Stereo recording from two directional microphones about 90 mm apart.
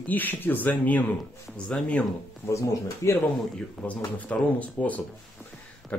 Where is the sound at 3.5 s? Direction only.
15° left (ahead or behind).